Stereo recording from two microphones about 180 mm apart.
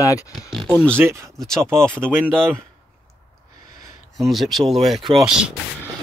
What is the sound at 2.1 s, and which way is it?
Speech, 10° right (ahead or behind).